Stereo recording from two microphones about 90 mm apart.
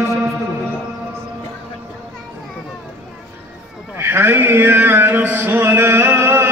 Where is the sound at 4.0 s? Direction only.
25° right (ahead or behind).